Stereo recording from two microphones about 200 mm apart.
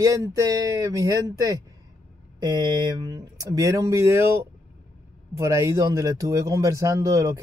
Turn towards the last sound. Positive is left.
turn(degrees=-15)  # may be behind; listen again after turning